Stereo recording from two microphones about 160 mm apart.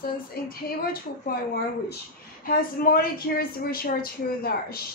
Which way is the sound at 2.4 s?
65° left (ahead or behind).